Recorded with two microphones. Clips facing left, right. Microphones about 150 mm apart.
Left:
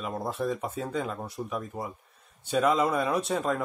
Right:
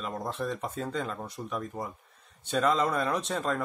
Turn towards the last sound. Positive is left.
turn(degrees=5)  # may be behind; listen again after turning